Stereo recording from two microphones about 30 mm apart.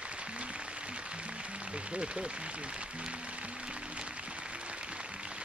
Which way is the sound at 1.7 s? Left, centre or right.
Right.